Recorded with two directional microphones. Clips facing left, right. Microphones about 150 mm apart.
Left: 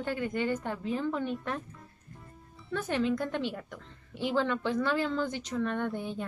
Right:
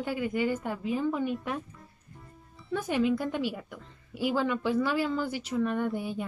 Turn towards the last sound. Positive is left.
turn(degrees=-10)  # may be behind; listen again after turning